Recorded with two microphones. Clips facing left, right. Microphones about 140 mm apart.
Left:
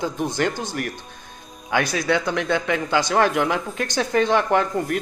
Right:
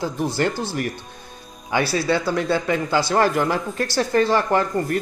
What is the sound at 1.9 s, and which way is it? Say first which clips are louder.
A woman's voice: right 1 dB; 5° right (ahead or behind).